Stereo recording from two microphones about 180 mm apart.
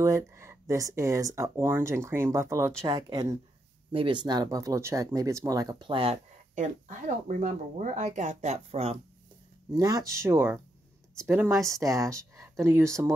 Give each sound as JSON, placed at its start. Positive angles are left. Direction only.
{"t": 0.0, "sound": "speech", "side_deg": -15}
{"t": 9.7, "sound": "speech", "side_deg": -20}